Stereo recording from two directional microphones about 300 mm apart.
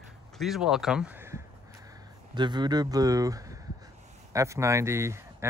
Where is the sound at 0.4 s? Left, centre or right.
Centre.